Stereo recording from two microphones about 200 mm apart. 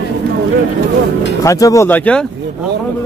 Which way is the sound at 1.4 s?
15° left (ahead or behind).